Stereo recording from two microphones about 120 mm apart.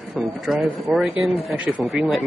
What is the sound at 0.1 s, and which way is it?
Speech, centre (ahead or behind).